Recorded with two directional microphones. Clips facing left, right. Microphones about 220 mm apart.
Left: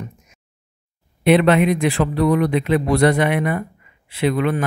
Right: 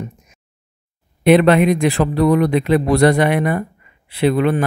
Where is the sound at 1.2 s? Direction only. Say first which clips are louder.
Right 3 dB; 40° right (ahead or behind).